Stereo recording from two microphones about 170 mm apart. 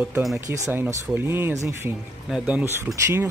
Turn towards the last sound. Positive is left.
turn(degrees=-15)  # may be behind; listen again after turning